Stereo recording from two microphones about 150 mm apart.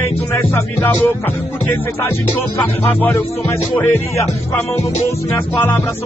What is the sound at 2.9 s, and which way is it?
Music, 10° left (ahead or behind).